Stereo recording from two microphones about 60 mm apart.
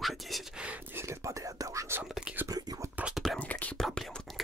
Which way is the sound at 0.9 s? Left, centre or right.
Right.